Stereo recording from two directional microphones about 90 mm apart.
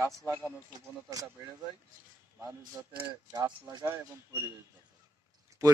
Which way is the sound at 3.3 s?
55° right (ahead or behind).